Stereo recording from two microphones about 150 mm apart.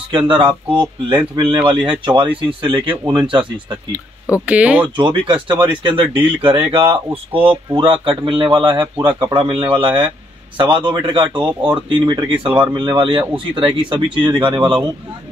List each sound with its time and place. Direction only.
0.1 s speech: 35° right (ahead or behind)
4.5 s speech: 10° right (ahead or behind)
4.9 s speech: 35° right (ahead or behind)